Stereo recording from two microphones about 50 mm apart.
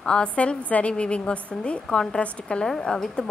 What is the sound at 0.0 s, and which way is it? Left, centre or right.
A woman's voice, centre.